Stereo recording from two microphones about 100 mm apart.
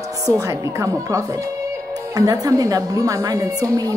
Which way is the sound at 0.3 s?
30° right (ahead or behind).